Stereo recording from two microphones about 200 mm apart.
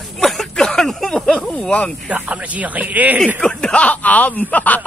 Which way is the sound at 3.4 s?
5° left (ahead or behind).